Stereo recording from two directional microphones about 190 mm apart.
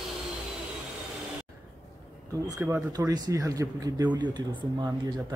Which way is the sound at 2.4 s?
15° right (ahead or behind).